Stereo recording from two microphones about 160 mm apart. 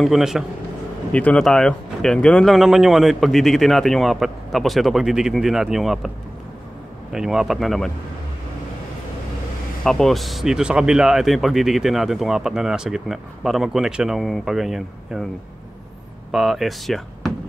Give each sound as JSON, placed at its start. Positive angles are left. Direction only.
{"t": 0.0, "sound": "speech", "side_deg": 0}
{"t": 9.8, "sound": "speech", "side_deg": 0}
{"t": 16.3, "sound": "speech", "side_deg": 0}